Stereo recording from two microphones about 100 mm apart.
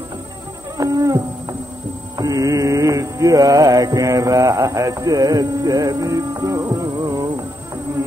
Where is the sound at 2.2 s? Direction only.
35° right (ahead or behind).